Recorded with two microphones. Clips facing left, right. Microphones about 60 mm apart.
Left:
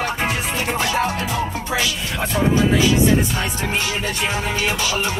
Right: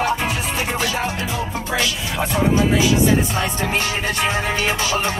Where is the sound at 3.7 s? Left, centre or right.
Right.